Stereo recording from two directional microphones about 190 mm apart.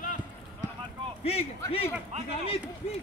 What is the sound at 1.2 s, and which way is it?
Speech, 30° left (ahead or behind).